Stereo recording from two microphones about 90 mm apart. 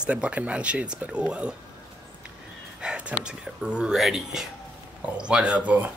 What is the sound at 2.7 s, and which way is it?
Speech, 10° right (ahead or behind).